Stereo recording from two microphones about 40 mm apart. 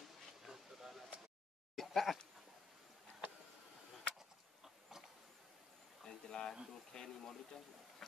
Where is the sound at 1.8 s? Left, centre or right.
Centre.